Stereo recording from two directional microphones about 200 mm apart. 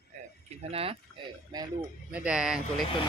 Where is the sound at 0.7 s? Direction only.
30° right (ahead or behind).